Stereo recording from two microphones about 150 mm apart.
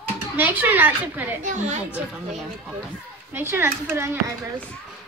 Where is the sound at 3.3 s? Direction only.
15° right (ahead or behind).